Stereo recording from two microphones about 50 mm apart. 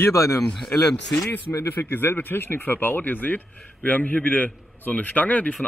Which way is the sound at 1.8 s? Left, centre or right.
Left.